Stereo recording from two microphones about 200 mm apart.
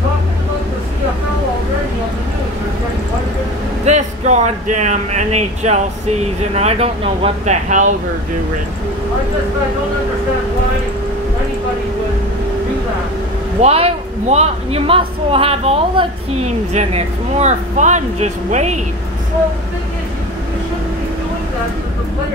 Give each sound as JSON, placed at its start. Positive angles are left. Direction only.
{"t": 3.8, "sound": "a woman's voice", "side_deg": -35}
{"t": 13.6, "sound": "a woman's voice", "side_deg": -30}